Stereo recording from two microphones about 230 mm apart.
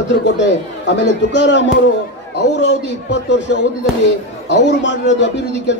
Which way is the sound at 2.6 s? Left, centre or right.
Left.